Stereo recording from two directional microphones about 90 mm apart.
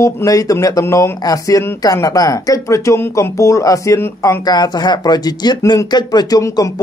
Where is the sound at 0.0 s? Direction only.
40° left (ahead or behind).